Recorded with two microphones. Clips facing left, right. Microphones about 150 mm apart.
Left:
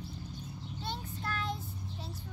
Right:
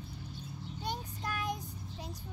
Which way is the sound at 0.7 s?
15° right (ahead or behind).